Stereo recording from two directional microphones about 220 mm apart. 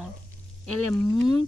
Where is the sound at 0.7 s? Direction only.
90° right.